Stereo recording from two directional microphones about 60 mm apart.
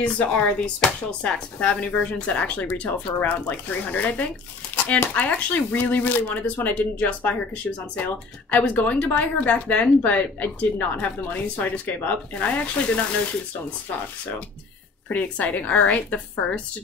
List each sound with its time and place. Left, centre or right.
0.0 s speech: left
15.0 s speech: left